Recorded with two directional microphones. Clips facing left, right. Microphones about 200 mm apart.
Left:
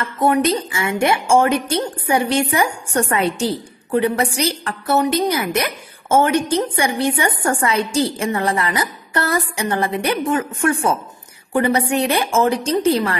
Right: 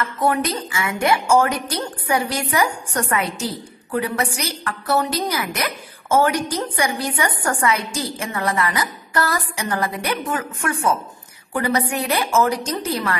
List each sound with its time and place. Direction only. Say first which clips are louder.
0.0 s a woman's voice: left 4 dB; 25° left (ahead or behind)